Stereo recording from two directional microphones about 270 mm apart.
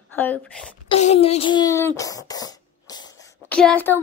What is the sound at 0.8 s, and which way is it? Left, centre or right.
A child's voice, left.